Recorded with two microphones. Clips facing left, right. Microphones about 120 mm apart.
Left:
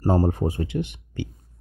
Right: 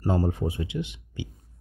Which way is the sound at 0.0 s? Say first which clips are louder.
Left 4 dB; 45° left (ahead or behind).